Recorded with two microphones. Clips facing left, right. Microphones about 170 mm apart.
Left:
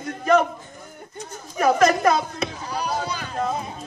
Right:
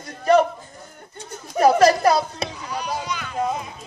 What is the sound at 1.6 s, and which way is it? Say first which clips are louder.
Speech: right 3 dB; 35° right (ahead or behind).